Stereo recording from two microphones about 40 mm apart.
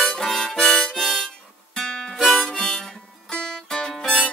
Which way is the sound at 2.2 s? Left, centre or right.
Centre.